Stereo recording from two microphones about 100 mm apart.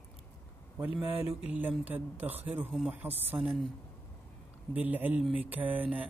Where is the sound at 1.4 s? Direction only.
15° right (ahead or behind).